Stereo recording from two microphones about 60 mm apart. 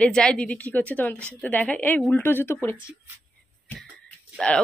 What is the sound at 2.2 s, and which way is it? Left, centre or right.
Speech, left.